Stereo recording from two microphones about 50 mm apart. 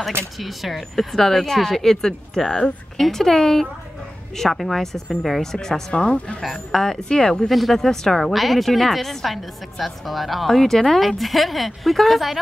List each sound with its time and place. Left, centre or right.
0.4 s speech: centre
6.4 s speech: centre